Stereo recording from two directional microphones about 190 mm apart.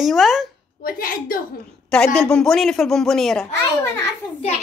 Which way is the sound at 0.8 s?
50° left (ahead or behind).